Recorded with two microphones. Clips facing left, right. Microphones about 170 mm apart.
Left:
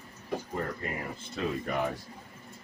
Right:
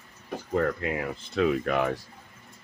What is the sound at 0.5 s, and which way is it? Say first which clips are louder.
Speech: right 13 dB; 90° right.